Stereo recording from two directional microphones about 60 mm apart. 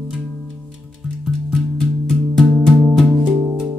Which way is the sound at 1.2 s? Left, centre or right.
Centre.